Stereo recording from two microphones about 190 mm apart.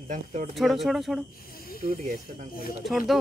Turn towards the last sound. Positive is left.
turn(degrees=0)  # may be behind; listen again after turning